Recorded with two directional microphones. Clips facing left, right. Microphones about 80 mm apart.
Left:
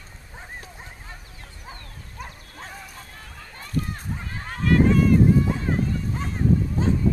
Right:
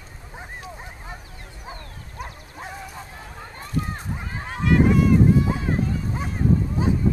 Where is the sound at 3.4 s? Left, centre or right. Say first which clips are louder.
Right 1 dB; right.